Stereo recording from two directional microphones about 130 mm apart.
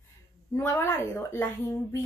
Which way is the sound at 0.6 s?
15° left (ahead or behind).